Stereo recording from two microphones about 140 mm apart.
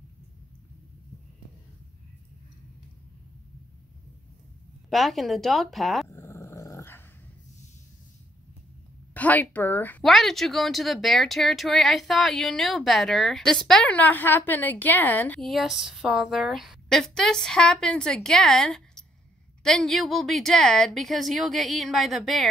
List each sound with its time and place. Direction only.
4.8 s speech: centre (ahead or behind)
6.0 s dog: 20° left (ahead or behind)
9.1 s a sound: 10° left (ahead or behind)
10.0 s speech: centre (ahead or behind)
15.4 s speech: centre (ahead or behind)